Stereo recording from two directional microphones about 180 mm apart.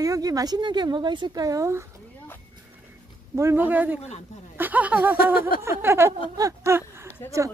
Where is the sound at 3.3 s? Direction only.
15° right (ahead or behind).